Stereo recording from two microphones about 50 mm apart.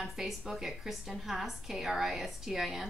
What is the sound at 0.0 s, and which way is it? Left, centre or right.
A woman's voice, centre.